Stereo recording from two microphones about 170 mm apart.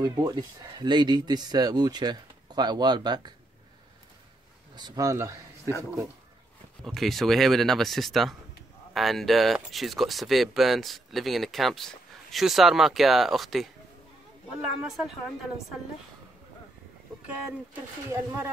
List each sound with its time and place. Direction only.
0.0 s speech: 25° right (ahead or behind)
4.7 s speech: 20° right (ahead or behind)
6.8 s speech: centre (ahead or behind)
18.1 s speech: 15° right (ahead or behind)